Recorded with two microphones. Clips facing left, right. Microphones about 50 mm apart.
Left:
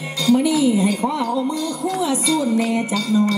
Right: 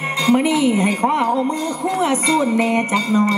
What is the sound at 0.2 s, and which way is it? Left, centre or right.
Speech, right.